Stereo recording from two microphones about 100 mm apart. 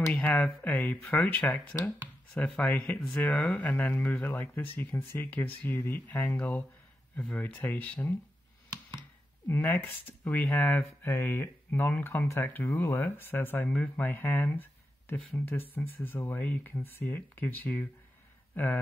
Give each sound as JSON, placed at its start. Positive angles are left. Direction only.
{"t": 0.1, "sound": "speech", "side_deg": 15}
{"t": 9.5, "sound": "speech", "side_deg": 20}